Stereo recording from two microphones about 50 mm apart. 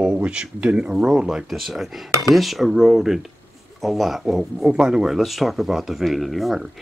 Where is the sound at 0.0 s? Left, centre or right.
Right.